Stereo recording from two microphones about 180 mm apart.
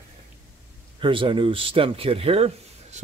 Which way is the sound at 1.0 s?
30° right (ahead or behind).